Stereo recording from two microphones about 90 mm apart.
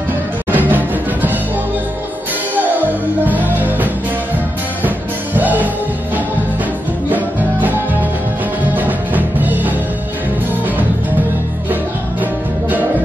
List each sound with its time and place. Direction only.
0.5 s music: 20° right (ahead or behind)
2.5 s music: 20° right (ahead or behind)
7.1 s music: 20° right (ahead or behind)
8.7 s music: 20° right (ahead or behind)
11.7 s music: 20° right (ahead or behind)